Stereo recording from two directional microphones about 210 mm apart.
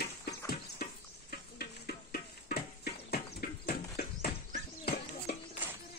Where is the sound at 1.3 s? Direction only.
45° left (ahead or behind).